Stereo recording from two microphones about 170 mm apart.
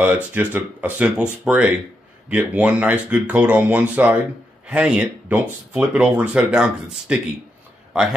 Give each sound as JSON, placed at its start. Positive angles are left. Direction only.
{"t": 0.0, "sound": "speech", "side_deg": -10}